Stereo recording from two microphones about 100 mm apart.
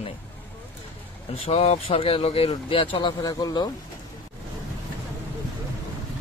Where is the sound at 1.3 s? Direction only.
80° left; by 3.1 s 60° left (ahead or behind).